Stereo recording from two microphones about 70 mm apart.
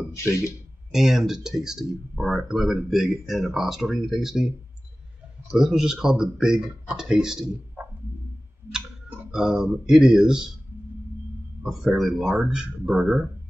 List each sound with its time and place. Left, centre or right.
0.1 s speech: left
0.9 s speech: centre
5.5 s speech: centre
7.8 s music: right
9.3 s speech: centre
11.6 s speech: centre